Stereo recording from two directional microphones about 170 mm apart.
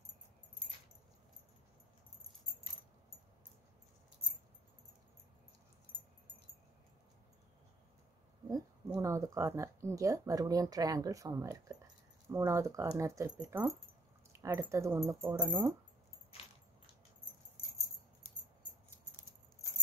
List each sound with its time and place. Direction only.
8.5 s speech: 20° right (ahead or behind)